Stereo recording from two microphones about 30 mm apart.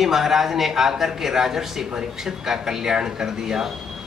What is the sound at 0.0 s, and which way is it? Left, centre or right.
Speech, centre.